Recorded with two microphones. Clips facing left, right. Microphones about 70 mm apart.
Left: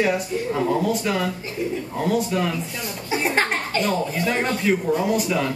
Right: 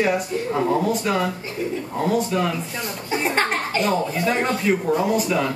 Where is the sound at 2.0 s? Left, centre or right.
Centre.